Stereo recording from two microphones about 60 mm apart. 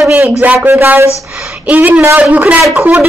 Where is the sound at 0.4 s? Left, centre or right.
Right.